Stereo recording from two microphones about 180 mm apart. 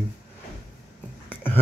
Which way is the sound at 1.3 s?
10° left (ahead or behind).